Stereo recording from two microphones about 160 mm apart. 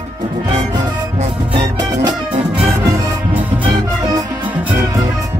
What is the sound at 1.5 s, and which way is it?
Music, 30° right (ahead or behind).